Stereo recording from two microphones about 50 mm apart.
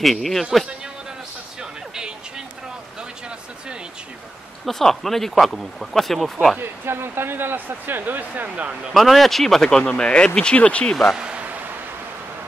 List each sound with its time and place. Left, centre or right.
0.0 s speech: centre
1.6 s music: centre
4.6 s speech: centre
6.6 s speech: right
8.9 s speech: centre; by 11.0 s left
11.1 s a sound: right